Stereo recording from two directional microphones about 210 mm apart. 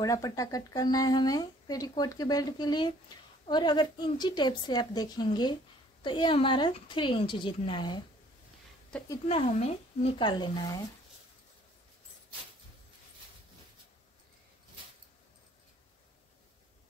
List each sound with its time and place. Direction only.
0.0 s a woman's voice: 15° left (ahead or behind)
8.9 s speech: 5° left (ahead or behind)
9.3 s speech: 30° left (ahead or behind)
10.1 s a woman's voice: 20° left (ahead or behind)